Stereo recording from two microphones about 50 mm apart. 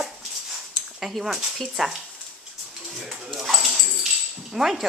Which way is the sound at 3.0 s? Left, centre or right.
Centre.